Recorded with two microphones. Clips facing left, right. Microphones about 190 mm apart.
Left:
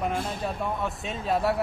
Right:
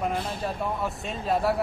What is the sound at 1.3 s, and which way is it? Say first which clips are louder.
Speech: even; centre (ahead or behind).